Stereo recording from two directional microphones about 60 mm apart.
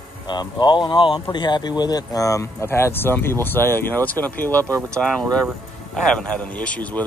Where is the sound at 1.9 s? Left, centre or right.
Left.